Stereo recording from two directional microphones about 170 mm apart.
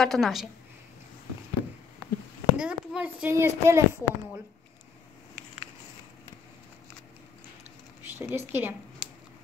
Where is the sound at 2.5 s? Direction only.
5° right (ahead or behind).